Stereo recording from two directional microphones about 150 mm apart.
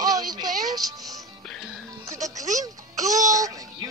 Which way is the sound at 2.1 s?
20° right (ahead or behind).